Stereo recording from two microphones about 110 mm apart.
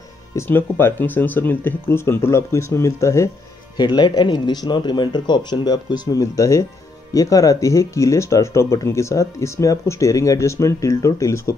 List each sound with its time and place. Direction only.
0.4 s speech: 20° left (ahead or behind)
3.7 s speech: 40° left (ahead or behind); by 11.5 s 25° left (ahead or behind)